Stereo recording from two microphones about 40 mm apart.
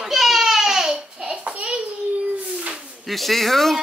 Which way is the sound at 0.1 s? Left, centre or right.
Centre.